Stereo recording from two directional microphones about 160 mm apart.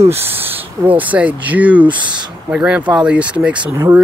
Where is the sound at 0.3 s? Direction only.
15° right (ahead or behind).